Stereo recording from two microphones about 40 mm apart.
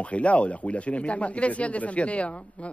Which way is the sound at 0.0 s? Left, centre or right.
Left.